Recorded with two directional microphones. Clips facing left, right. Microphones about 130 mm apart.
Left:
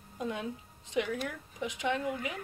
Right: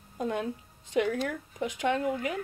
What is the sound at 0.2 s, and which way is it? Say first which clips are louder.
Speech: right 5 dB; 50° right (ahead or behind).